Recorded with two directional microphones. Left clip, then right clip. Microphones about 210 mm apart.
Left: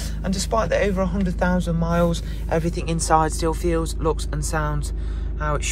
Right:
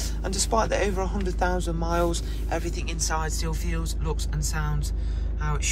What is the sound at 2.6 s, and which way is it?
Speech, centre (ahead or behind).